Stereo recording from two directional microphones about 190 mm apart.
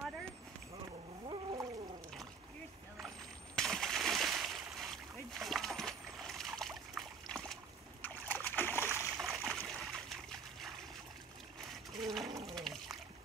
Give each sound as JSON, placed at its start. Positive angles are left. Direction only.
{"t": 1.2, "sound": "a sound", "side_deg": -25}
{"t": 3.5, "sound": "splash", "side_deg": 0}
{"t": 9.2, "sound": "trickle", "side_deg": 0}
{"t": 11.7, "sound": "splash", "side_deg": 0}
{"t": 12.4, "sound": "water", "side_deg": 0}